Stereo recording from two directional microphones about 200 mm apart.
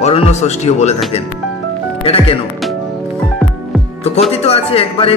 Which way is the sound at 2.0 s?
30° left (ahead or behind).